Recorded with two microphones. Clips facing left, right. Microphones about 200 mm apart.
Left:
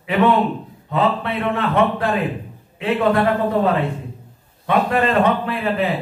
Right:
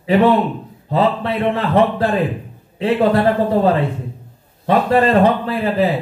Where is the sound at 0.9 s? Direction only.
35° right (ahead or behind).